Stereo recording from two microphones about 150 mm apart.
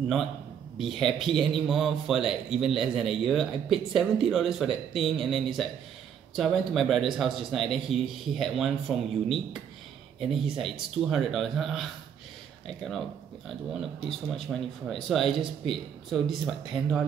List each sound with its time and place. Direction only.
0.7 s speech: centre (ahead or behind)
10.6 s speech: centre (ahead or behind)